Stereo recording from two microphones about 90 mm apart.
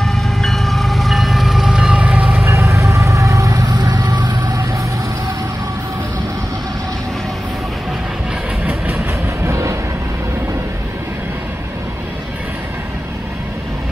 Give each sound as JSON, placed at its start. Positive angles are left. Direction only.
{"t": 0.0, "sound": "train", "side_deg": 5}
{"t": 2.4, "sound": "vehicle", "side_deg": -35}
{"t": 9.4, "sound": "music", "side_deg": -35}